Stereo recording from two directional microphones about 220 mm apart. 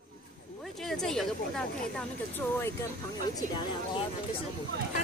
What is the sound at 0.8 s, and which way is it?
Speech, centre (ahead or behind).